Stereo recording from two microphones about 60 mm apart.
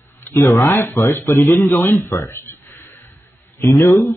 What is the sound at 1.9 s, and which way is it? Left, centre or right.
Speech, left.